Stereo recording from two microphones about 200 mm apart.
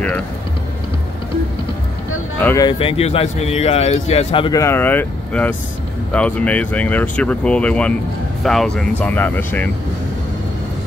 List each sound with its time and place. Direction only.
2.4 s speech: 20° left (ahead or behind)